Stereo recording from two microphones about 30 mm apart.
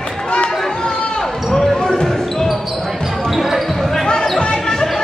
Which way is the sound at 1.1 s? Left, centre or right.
Centre.